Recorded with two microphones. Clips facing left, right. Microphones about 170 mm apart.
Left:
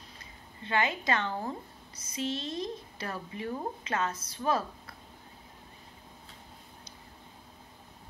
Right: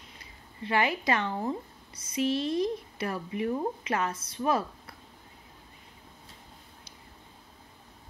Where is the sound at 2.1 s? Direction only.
25° left (ahead or behind).